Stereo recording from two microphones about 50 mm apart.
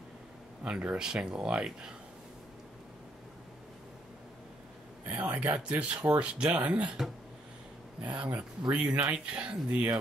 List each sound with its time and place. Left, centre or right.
0.7 s speech: right
5.0 s speech: right
8.0 s speech: right